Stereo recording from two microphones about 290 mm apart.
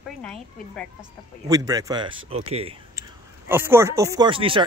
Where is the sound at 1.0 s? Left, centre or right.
Centre.